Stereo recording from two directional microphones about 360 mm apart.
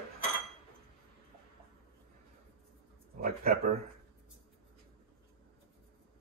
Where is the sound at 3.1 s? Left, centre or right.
Right.